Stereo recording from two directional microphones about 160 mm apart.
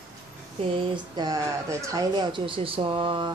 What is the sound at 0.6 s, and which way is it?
Speech, 35° right (ahead or behind).